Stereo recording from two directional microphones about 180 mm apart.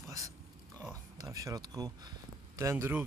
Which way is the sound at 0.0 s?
15° right (ahead or behind).